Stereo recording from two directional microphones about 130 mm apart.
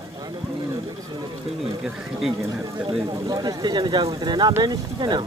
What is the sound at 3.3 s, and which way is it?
Speech, 30° right (ahead or behind).